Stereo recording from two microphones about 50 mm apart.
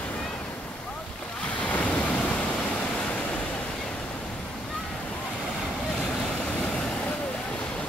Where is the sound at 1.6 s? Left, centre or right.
Left.